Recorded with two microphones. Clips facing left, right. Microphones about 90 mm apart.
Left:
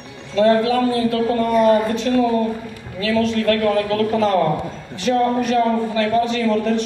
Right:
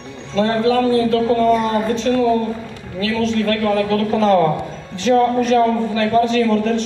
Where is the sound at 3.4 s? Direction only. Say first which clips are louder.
Even; 35° right (ahead or behind).